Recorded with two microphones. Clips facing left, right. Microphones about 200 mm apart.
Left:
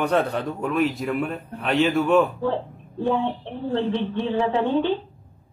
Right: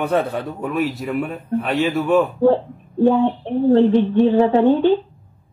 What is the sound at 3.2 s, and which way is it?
A woman's voice, 45° right (ahead or behind).